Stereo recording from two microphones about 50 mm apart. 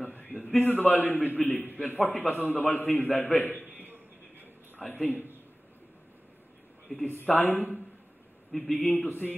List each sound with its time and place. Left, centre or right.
0.0 s a sound: left
0.6 s a man's voice: left
2.8 s a man's voice: left
3.7 s a sound: right
4.7 s a man's voice: left
5.1 s a man's voice: right
6.9 s speech: centre
7.2 s a man's voice: left
8.5 s a man's voice: centre
8.8 s a man's voice: left